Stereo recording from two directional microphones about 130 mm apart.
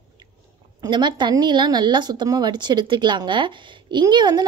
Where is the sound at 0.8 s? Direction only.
35° right (ahead or behind).